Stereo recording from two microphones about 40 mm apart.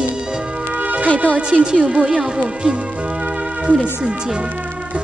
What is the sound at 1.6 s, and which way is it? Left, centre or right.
Music, right.